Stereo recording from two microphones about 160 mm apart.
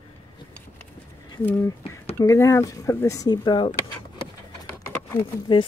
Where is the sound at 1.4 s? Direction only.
10° left (ahead or behind); by 3.7 s 30° left (ahead or behind).